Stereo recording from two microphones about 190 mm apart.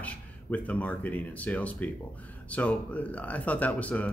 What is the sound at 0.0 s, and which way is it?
Speech, 10° left (ahead or behind).